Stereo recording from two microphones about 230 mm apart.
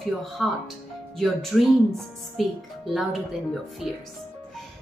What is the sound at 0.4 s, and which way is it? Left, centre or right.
Speech, centre.